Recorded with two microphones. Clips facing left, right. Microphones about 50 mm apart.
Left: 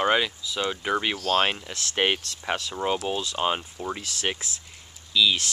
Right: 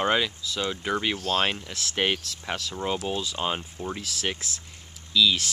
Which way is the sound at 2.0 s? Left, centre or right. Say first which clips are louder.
Left 2 dB; centre.